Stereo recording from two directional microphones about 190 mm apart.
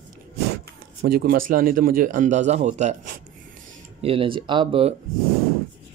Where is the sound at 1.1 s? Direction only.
50° right (ahead or behind).